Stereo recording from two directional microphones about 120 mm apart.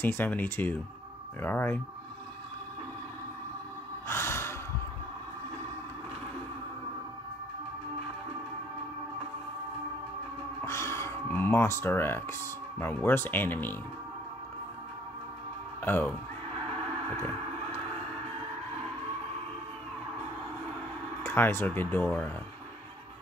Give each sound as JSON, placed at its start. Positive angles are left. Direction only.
{"t": 0.0, "sound": "speech", "side_deg": 15}
{"t": 4.1, "sound": "sigh", "side_deg": 20}
{"t": 10.6, "sound": "speech", "side_deg": 25}
{"t": 15.8, "sound": "speech", "side_deg": 15}
{"t": 21.2, "sound": "speech", "side_deg": 20}